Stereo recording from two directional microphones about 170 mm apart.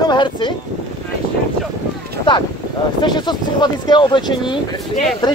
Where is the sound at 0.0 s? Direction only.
25° left (ahead or behind).